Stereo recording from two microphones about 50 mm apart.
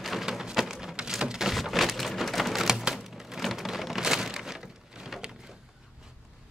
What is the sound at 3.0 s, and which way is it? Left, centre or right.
Rain, centre.